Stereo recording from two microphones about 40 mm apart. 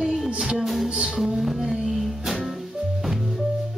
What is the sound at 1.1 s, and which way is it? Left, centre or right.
Music, centre.